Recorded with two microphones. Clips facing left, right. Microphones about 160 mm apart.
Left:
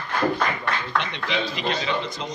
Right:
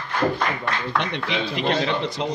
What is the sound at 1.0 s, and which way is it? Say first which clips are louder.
Speech: right 1 dB; 55° right (ahead or behind).